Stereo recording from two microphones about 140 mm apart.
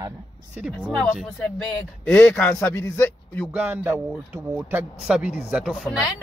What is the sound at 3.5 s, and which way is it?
A man's voice, 15° right (ahead or behind).